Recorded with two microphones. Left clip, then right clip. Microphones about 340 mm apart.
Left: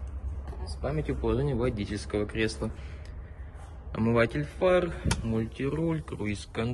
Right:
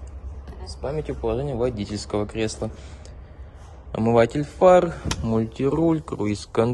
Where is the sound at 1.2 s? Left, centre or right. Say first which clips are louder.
Right 5 dB; centre.